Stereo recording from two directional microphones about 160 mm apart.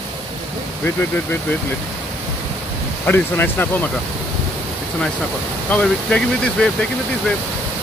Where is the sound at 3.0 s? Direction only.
10° left (ahead or behind).